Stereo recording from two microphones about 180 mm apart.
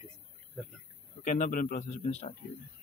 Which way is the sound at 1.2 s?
45° left (ahead or behind).